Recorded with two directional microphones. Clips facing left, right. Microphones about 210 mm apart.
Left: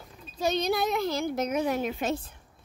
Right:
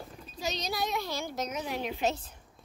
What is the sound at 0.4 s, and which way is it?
A woman's voice, 55° left (ahead or behind).